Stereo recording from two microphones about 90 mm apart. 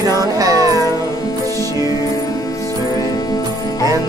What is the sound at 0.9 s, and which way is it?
Music, 45° left (ahead or behind).